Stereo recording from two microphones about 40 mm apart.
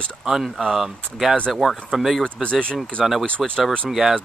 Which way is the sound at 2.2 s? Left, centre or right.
Left.